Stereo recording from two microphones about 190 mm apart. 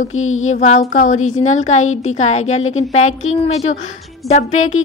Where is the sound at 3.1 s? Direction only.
90° left.